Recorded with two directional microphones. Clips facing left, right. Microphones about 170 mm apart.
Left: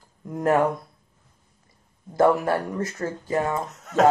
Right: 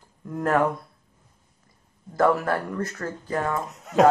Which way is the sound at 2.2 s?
25° left (ahead or behind).